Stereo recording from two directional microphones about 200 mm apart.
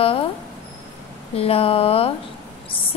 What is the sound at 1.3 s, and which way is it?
Speech, 30° left (ahead or behind).